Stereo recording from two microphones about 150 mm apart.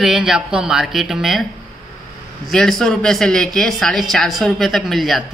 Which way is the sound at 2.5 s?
5° left (ahead or behind).